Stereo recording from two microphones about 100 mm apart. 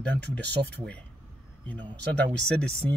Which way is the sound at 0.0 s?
15° left (ahead or behind).